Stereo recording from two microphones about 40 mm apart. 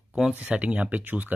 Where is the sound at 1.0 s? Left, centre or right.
Right.